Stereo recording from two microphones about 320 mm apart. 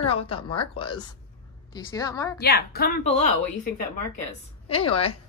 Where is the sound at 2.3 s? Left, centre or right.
Left.